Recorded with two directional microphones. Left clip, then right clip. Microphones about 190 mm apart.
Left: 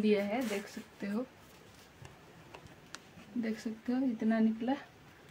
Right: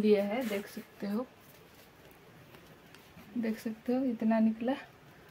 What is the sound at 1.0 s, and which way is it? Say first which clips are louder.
Speech: right 2 dB; 20° right (ahead or behind).